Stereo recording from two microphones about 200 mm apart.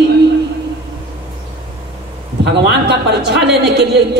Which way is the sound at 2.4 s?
60° right (ahead or behind).